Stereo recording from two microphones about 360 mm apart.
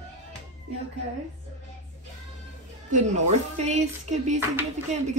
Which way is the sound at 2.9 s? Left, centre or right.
Centre.